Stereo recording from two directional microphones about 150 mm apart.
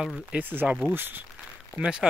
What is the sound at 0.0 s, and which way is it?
Speech, 5° right (ahead or behind).